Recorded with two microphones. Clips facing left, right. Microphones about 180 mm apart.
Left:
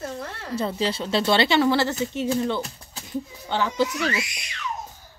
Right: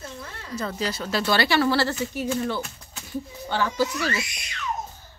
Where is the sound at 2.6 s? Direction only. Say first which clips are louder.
Left 2 dB; 35° left (ahead or behind).